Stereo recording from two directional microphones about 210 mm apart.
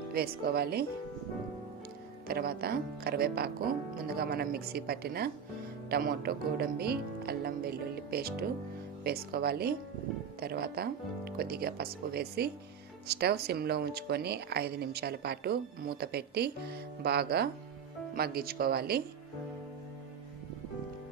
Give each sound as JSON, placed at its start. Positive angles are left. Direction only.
{"t": 0.1, "sound": "speech", "side_deg": -45}
{"t": 2.2, "sound": "speech", "side_deg": -45}